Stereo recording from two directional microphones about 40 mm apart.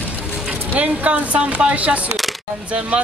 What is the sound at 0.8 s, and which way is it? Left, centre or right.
A woman's voice, right.